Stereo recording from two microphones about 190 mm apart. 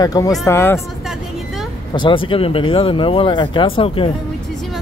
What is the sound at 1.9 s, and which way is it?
Speech, 25° left (ahead or behind).